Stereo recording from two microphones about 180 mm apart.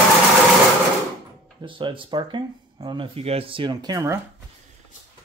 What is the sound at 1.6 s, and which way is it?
Speech, 25° right (ahead or behind).